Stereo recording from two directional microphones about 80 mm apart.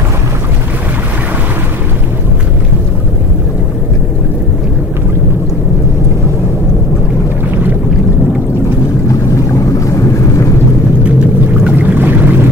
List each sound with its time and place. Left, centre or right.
11.6 s pour: right